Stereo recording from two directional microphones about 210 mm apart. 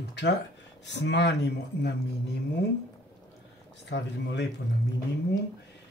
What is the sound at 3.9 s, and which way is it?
Speech, 55° left (ahead or behind).